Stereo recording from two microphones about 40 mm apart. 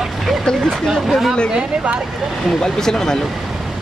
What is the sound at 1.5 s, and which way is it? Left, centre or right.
Speech, right.